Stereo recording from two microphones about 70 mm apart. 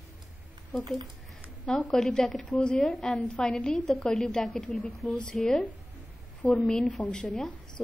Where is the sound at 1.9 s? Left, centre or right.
Centre.